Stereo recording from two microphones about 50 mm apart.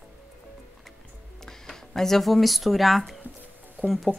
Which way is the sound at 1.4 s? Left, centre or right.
Centre.